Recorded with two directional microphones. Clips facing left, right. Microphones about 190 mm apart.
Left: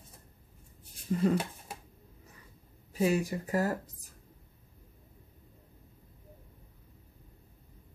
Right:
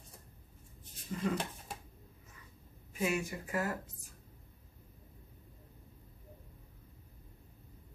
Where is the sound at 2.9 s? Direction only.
35° left (ahead or behind).